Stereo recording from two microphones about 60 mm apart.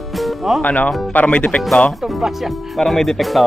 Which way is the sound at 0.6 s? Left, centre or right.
Left.